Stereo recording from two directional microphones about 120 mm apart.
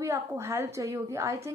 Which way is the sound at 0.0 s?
25° right (ahead or behind).